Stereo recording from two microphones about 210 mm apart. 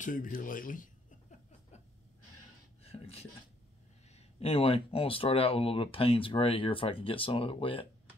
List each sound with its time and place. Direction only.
0.0 s speech: 40° left (ahead or behind)
2.8 s a sound: 30° left (ahead or behind)
4.1 s speech: 30° left (ahead or behind)